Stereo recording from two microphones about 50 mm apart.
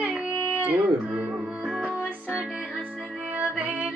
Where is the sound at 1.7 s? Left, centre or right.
Right.